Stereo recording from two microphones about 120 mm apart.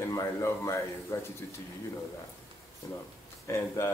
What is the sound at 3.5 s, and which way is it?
Speech, 25° left (ahead or behind).